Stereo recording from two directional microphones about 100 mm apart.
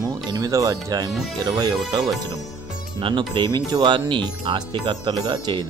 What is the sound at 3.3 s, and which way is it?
Speech, 45° right (ahead or behind).